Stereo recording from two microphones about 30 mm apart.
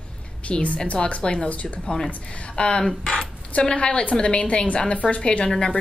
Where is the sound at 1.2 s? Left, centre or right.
Left.